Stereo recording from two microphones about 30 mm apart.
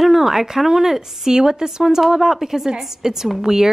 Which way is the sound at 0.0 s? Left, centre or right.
Centre.